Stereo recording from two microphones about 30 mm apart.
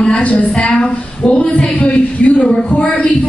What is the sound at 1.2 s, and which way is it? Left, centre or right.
A woman's voice, left.